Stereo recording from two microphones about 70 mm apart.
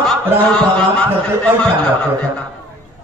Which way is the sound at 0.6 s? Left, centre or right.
Centre.